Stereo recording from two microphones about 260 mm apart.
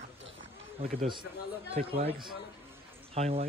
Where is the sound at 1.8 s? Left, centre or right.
Right.